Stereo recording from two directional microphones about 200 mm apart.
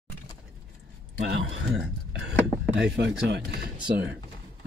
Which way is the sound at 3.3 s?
50° right (ahead or behind).